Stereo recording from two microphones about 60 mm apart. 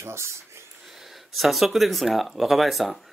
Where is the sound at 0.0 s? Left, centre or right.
Right.